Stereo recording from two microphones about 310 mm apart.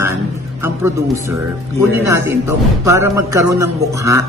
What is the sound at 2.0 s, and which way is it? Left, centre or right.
Speech, centre.